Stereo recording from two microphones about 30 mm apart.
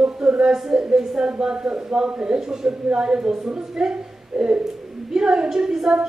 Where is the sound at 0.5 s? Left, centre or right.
Centre.